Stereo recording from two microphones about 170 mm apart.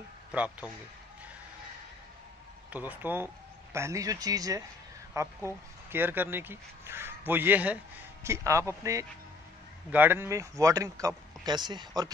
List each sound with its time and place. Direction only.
0.3 s speech: 10° right (ahead or behind)
2.7 s speech: 10° right (ahead or behind)